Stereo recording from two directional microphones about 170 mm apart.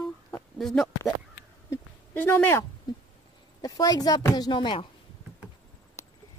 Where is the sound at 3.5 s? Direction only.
20° left (ahead or behind).